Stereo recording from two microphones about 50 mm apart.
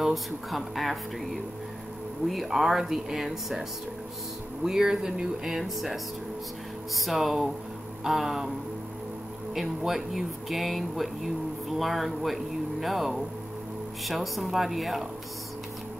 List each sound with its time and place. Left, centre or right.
0.0 s speech: centre
4.6 s speech: centre
7.0 s speech: centre
9.5 s speech: centre